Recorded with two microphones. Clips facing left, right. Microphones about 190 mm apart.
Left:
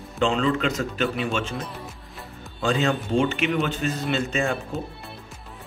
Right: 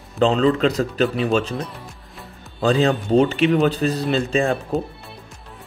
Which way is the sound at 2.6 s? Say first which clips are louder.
Right 5 dB; 35° right (ahead or behind).